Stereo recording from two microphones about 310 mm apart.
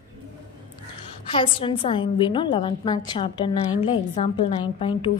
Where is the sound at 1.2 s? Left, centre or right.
Centre.